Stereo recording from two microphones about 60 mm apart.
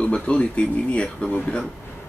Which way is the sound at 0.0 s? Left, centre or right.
Left.